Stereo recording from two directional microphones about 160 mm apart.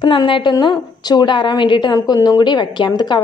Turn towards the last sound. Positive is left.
turn(degrees=25)  # may be behind; listen again after turning